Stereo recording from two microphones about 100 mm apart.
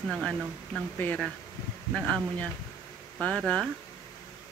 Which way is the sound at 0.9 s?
15° left (ahead or behind).